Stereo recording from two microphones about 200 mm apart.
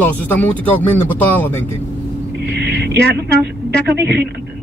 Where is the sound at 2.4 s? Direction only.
60° right (ahead or behind).